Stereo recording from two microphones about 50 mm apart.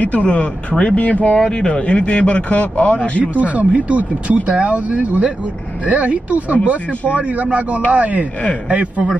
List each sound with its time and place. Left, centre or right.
0.0 s a man's voice: left
3.3 s speech: right